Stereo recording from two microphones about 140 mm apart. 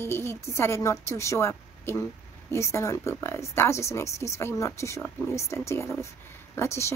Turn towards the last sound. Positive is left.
turn(degrees=20)  # may be behind; listen again after turning